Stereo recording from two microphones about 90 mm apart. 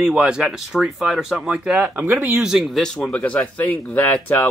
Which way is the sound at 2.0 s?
20° right (ahead or behind).